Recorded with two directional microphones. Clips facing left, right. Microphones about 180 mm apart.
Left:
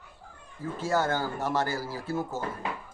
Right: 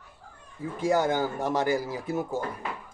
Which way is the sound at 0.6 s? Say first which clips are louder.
Right 3 dB; 15° right (ahead or behind).